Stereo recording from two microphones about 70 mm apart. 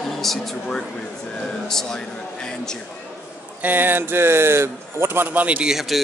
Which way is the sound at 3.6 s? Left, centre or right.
Right.